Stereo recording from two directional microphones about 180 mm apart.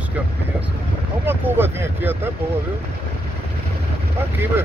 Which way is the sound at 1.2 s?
10° right (ahead or behind).